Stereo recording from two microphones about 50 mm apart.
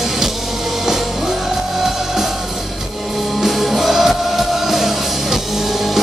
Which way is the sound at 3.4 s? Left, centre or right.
Centre.